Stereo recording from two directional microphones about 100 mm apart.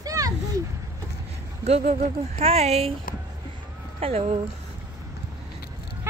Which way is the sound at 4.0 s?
85° right.